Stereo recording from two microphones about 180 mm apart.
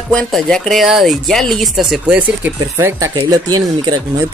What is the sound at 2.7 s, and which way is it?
Speech, 15° right (ahead or behind).